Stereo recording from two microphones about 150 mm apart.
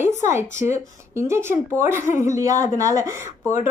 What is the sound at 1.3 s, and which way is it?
Speech, 15° right (ahead or behind).